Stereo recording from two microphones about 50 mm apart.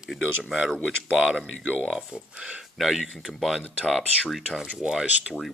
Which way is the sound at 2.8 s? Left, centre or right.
Centre.